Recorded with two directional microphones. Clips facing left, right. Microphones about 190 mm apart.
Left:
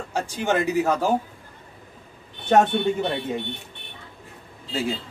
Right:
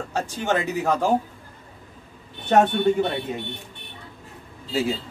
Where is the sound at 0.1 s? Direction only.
10° left (ahead or behind).